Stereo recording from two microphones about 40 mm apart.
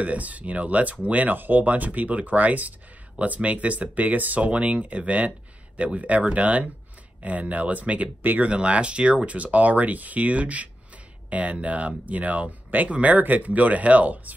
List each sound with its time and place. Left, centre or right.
0.0 s speech: right
8.2 s speech: right
8.5 s speech: right